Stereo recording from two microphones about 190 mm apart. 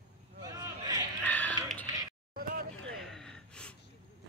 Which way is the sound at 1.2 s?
10° left (ahead or behind).